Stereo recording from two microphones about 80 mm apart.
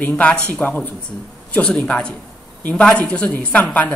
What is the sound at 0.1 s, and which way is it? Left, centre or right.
A woman's voice, centre.